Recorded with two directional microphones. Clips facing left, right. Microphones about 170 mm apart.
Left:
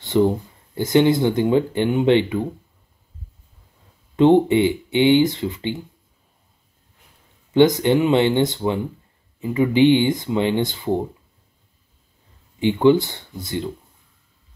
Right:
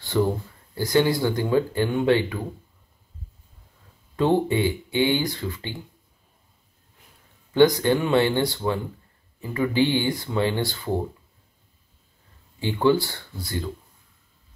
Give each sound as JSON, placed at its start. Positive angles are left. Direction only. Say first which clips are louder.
{"t": 0.1, "sound": "speech", "louder": "left 5 dB", "side_deg": 20}
{"t": 4.2, "sound": "speech", "louder": "left 7 dB", "side_deg": 20}
{"t": 7.5, "sound": "speech", "louder": "left 3 dB", "side_deg": 20}
{"t": 12.5, "sound": "speech", "louder": "left 5 dB", "side_deg": 20}